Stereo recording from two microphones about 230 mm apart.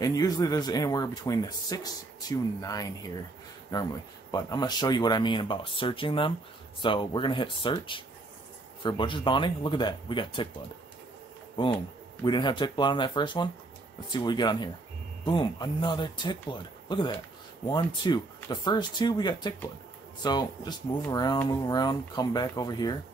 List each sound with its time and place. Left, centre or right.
0.0 s speech: centre
11.6 s speech: left